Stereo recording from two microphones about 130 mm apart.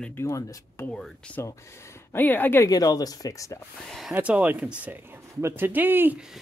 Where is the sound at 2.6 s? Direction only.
30° left (ahead or behind).